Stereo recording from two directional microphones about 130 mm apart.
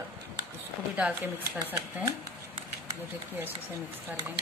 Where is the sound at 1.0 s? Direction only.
10° right (ahead or behind).